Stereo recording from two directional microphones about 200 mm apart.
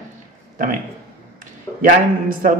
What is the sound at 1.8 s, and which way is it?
Speech, 45° right (ahead or behind).